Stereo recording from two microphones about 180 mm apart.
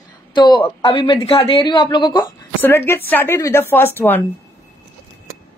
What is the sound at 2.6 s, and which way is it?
A woman's voice, 10° left (ahead or behind).